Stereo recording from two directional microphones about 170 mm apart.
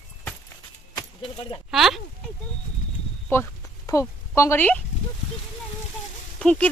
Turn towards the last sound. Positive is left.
turn(degrees=5)  # may be behind; listen again after turning